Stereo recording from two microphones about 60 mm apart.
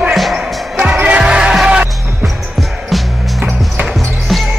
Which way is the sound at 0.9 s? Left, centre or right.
Right.